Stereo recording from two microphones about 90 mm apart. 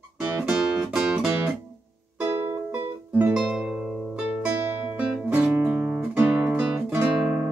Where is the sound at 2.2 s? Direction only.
20° right (ahead or behind).